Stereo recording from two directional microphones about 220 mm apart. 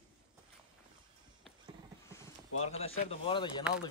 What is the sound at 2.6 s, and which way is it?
Speech, 30° left (ahead or behind).